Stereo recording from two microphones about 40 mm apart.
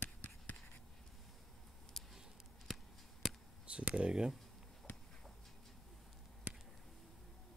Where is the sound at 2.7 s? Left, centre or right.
Centre.